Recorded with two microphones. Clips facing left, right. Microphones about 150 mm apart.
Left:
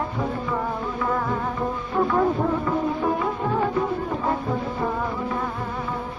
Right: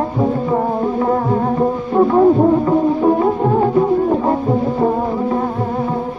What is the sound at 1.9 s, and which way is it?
Music, 35° right (ahead or behind).